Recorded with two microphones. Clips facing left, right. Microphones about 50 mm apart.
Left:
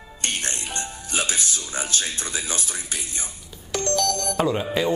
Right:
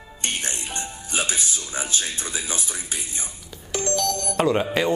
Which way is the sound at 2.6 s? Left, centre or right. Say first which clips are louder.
Even; centre.